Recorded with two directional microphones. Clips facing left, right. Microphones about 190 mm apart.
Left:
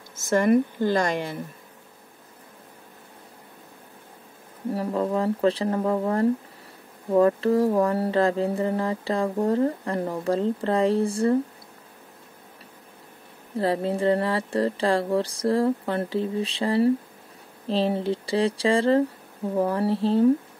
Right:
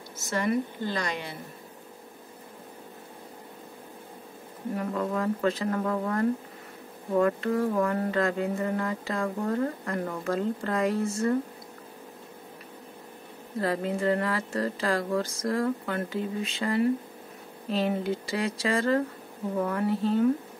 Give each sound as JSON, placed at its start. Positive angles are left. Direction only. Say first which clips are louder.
{"t": 0.1, "sound": "speech", "louder": "left 8 dB", "side_deg": 50}
{"t": 4.7, "sound": "speech", "louder": "left 4 dB", "side_deg": 30}
{"t": 13.6, "sound": "speech", "louder": "left 4 dB", "side_deg": 30}